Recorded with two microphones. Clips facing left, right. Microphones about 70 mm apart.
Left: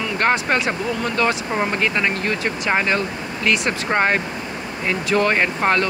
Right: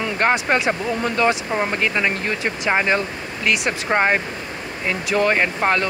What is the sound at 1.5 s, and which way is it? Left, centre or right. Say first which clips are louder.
Speech: even; centre.